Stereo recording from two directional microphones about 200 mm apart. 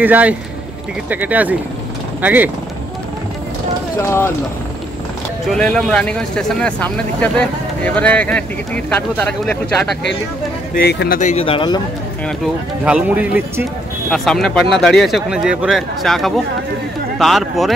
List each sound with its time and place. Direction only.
0.0 s speech: 10° right (ahead or behind)
4.0 s speech: 15° left (ahead or behind)
5.5 s speech: 5° left (ahead or behind)
10.7 s speech: 50° left (ahead or behind)
11.1 s speech: 35° left (ahead or behind)
12.8 s speech: 5° right (ahead or behind)